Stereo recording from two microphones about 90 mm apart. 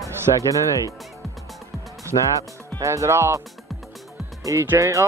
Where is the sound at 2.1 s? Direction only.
65° left (ahead or behind).